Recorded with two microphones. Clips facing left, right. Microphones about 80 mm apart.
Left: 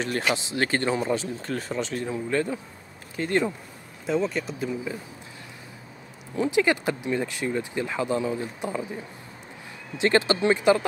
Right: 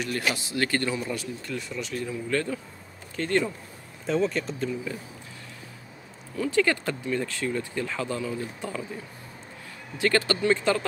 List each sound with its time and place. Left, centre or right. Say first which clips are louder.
0.0 s speech: left 3 dB; left
1.5 s speech: left 4 dB; left; by 3.5 s centre
4.0 s speech: even; centre
4.9 s speech: left 2 dB; centre
6.3 s speech: left 2 dB; centre